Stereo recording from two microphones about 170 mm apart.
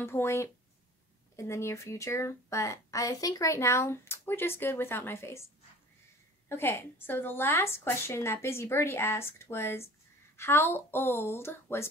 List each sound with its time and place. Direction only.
0.0 s a woman's voice: 15° left (ahead or behind)
6.5 s a woman's voice: 15° left (ahead or behind)